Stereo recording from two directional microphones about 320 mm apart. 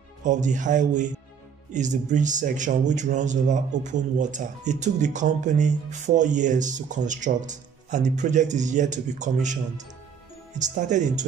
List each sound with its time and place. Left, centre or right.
0.2 s speech: right